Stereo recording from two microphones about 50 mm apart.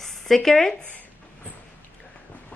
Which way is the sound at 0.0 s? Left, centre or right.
Centre.